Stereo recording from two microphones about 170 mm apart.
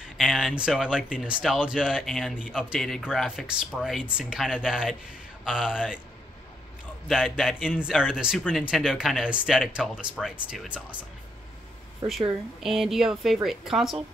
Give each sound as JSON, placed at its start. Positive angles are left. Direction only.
{"t": 0.2, "sound": "speech", "side_deg": 0}
{"t": 7.1, "sound": "speech", "side_deg": 0}
{"t": 12.1, "sound": "speech", "side_deg": 0}